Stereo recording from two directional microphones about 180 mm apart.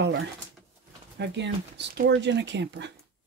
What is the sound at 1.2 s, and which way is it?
Speech, 75° right (ahead or behind).